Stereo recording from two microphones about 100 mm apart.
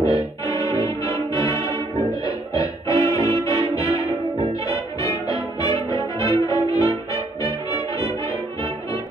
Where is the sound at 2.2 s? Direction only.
35° left (ahead or behind).